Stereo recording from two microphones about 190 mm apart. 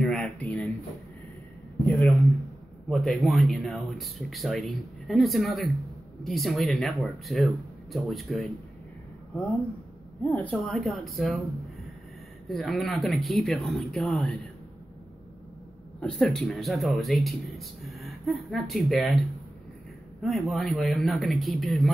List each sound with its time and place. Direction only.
0.0 s a sound: 5° left (ahead or behind)
1.9 s a man's voice: centre (ahead or behind)
10.2 s speech: 5° left (ahead or behind)
12.4 s speech: centre (ahead or behind)
16.0 s speech: 5° left (ahead or behind)